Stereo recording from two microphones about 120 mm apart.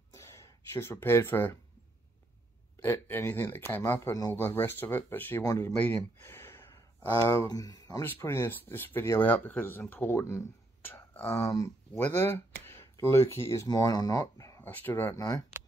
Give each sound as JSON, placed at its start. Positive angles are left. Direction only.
{"t": 0.1, "sound": "a sound", "side_deg": 25}
{"t": 2.8, "sound": "speech", "side_deg": 15}
{"t": 5.4, "sound": "speech", "side_deg": 30}
{"t": 6.2, "sound": "a sound", "side_deg": 20}
{"t": 7.4, "sound": "speech", "side_deg": 30}
{"t": 8.0, "sound": "speech", "side_deg": 20}
{"t": 14.6, "sound": "speech", "side_deg": 15}
{"t": 15.1, "sound": "speech", "side_deg": 30}